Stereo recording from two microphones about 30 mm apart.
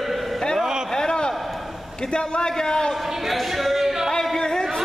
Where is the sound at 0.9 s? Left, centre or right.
Left.